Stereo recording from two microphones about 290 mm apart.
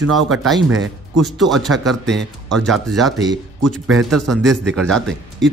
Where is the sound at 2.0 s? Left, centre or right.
Right.